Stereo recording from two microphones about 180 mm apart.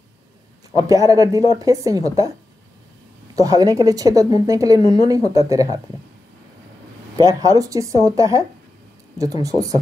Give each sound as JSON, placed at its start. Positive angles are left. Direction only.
{"t": 0.7, "sound": "a woman's voice", "side_deg": -20}
{"t": 3.3, "sound": "a woman's voice", "side_deg": -20}
{"t": 7.2, "sound": "a woman's voice", "side_deg": -20}